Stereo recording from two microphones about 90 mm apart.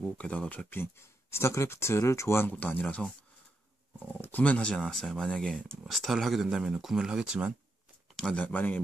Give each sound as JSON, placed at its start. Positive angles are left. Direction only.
{"t": 0.0, "sound": "speech", "side_deg": 15}
{"t": 2.5, "sound": "speech", "side_deg": 15}
{"t": 8.2, "sound": "speech", "side_deg": 10}